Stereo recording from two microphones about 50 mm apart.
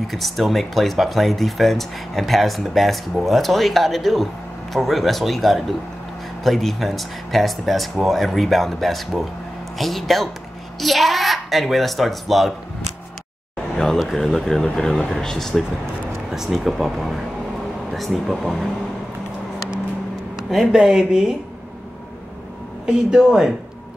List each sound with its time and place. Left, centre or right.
0.1 s speech: centre
13.9 s speech: centre
16.3 s speech: centre
20.4 s speech: centre
20.7 s speech: centre
22.8 s speech: centre